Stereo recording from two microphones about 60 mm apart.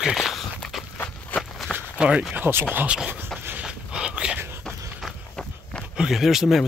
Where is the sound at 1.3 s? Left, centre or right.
Left.